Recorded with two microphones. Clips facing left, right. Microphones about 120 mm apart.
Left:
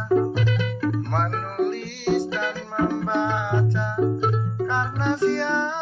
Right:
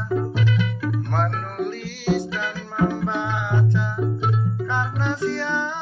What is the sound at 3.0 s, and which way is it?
Music, 25° left (ahead or behind).